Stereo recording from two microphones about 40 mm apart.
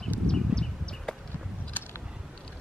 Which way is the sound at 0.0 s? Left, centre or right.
Centre.